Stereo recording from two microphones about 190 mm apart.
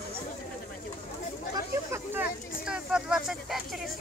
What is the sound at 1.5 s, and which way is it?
Speech, 10° right (ahead or behind).